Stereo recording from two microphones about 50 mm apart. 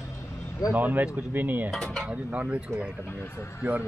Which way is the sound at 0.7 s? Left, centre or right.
Right.